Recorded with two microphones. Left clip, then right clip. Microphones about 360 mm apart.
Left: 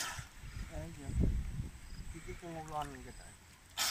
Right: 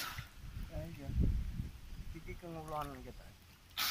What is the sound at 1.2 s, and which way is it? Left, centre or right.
Speech, left.